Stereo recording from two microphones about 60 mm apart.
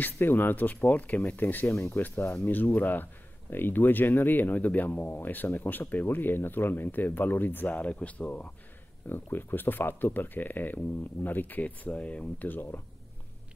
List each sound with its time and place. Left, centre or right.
0.0 s speech: left
1.7 s speech: left
2.0 s speech: left
9.1 s speech: left